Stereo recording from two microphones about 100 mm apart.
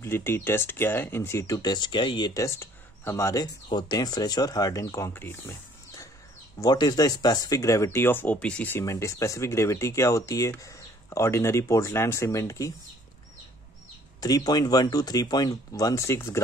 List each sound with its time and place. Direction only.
0.0 s speech: 25° left (ahead or behind)
1.6 s speech: 50° left (ahead or behind)
2.4 s speech: 25° left (ahead or behind)
3.6 s speech: 45° left (ahead or behind)
5.1 s speech: 20° left (ahead or behind)
6.6 s speech: 45° left (ahead or behind); by 8.7 s 10° left (ahead or behind)
8.7 s speech: 30° left (ahead or behind)
14.2 s speech: 40° left (ahead or behind)